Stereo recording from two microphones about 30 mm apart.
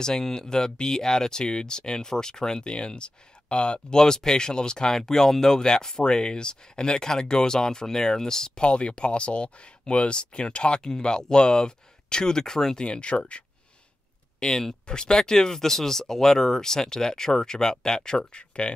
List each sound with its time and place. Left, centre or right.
0.0 s speech: centre; by 3.8 s left
3.9 s speech: left
5.6 s speech: left
8.5 s speech: left; by 12.7 s centre
12.7 s speech: left
14.4 s speech: left